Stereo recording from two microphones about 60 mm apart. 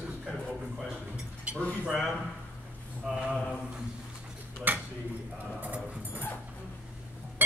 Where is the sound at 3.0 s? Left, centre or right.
Centre.